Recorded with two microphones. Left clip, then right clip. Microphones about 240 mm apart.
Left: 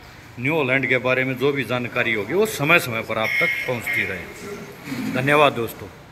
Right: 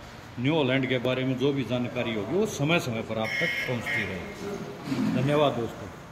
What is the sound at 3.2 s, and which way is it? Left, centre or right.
Speech, right.